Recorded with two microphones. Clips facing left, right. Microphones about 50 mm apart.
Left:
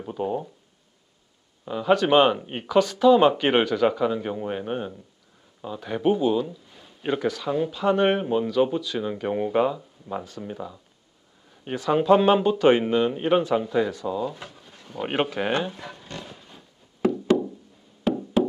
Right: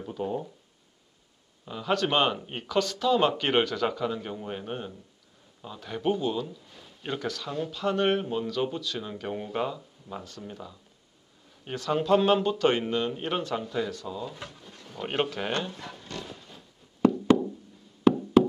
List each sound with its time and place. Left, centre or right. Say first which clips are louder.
0.0 s speech: left 4 dB; centre
1.7 s speech: left 7 dB; centre